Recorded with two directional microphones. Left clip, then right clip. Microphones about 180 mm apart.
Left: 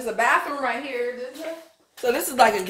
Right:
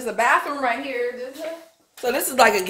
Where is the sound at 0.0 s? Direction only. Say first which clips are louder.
Right 1 dB; 30° right (ahead or behind).